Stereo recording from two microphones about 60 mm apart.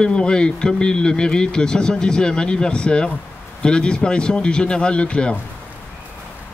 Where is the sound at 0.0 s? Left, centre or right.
Centre.